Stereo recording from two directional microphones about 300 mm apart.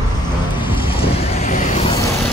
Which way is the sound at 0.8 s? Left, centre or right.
Centre.